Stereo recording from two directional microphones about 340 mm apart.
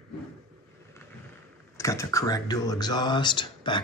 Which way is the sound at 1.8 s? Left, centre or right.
Centre.